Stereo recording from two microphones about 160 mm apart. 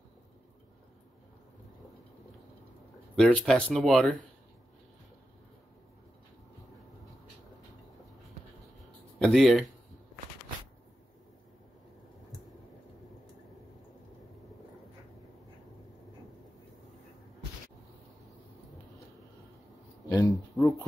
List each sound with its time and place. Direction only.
3.2 s speech: 5° left (ahead or behind)
9.2 s speech: centre (ahead or behind)
20.1 s a sound: 20° left (ahead or behind)